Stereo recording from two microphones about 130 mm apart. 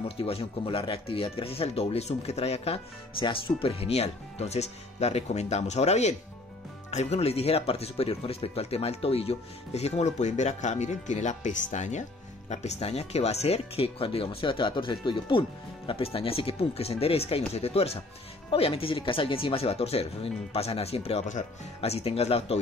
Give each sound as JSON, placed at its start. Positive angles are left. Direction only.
{"t": 0.2, "sound": "speech", "side_deg": 45}